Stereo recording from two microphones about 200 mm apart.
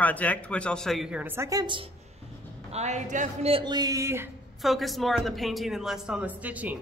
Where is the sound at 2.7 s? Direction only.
35° right (ahead or behind); by 4.2 s 15° right (ahead or behind).